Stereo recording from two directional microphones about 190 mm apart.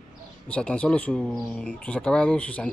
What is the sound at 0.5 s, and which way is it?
Speech, 5° left (ahead or behind).